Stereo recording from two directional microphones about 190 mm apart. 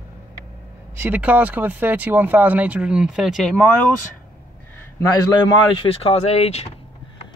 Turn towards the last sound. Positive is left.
turn(degrees=35)  # may be behind; listen again after turning